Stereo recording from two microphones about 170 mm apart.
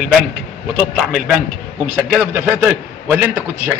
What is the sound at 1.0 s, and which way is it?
A man's voice, 5° right (ahead or behind).